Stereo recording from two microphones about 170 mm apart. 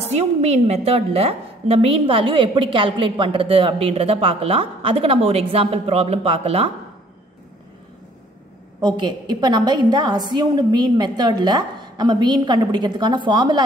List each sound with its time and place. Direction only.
0.0 s a woman's voice: 40° right (ahead or behind)
8.8 s a woman's voice: 25° right (ahead or behind)